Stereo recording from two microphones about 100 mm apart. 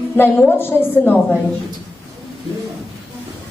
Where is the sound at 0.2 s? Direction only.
20° left (ahead or behind).